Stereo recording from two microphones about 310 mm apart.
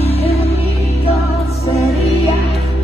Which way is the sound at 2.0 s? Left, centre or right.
Centre.